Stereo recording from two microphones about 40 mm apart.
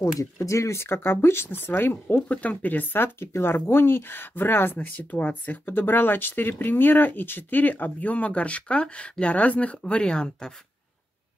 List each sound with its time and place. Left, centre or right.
0.7 s speech: left
2.2 s speech: left
4.7 s speech: left
5.7 s speech: left